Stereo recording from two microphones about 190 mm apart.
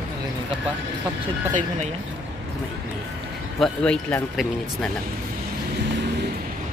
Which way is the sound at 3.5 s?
5° left (ahead or behind).